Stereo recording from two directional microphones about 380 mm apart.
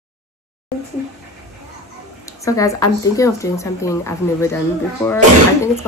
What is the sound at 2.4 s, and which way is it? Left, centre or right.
Speech, centre.